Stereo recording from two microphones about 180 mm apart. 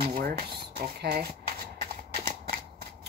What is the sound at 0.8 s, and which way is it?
Speech, 60° right (ahead or behind).